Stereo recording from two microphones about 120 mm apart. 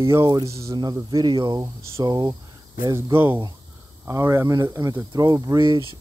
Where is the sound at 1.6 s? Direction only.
25° right (ahead or behind).